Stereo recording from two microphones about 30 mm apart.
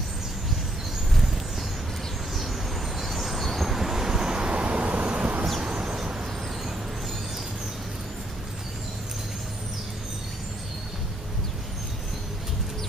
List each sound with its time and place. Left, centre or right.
3.0 s vehicle: centre
4.2 s vehicle: right
5.6 s a sound: right